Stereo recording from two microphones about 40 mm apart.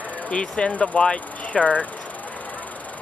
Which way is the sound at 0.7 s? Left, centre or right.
Left.